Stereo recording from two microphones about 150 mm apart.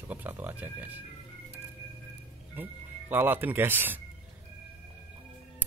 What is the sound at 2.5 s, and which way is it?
Speech, 15° right (ahead or behind).